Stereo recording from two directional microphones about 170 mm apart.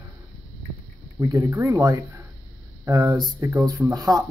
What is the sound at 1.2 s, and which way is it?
Speech, 20° right (ahead or behind).